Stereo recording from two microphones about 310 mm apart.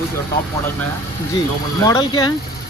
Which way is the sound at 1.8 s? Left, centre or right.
Centre.